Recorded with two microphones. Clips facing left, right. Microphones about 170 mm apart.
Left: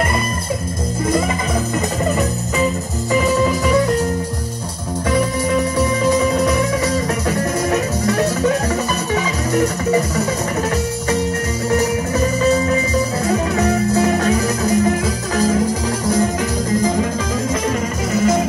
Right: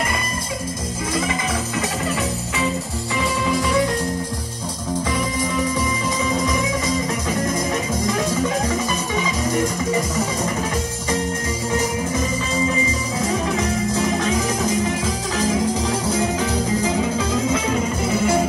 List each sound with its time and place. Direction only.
5.8 s music: 65° left (ahead or behind)
13.2 s music: 65° left (ahead or behind)
18.1 s music: 10° right (ahead or behind)